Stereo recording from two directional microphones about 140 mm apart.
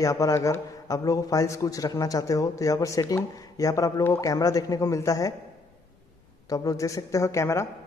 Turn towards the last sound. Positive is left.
turn(degrees=20)  # may be behind; listen again after turning